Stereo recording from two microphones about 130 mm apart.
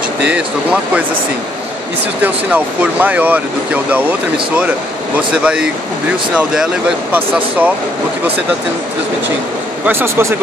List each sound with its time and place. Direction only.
0.2 s speech: 10° right (ahead or behind)
2.2 s speech: 15° right (ahead or behind)
9.8 s speech: 20° right (ahead or behind)